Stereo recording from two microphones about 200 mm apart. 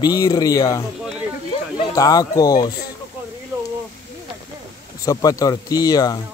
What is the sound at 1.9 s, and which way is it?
Speech, 20° left (ahead or behind).